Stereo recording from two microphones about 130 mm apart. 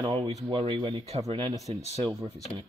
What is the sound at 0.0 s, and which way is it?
Speech, 40° right (ahead or behind).